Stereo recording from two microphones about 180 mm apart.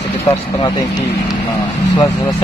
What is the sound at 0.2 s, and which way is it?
Speech, 30° left (ahead or behind).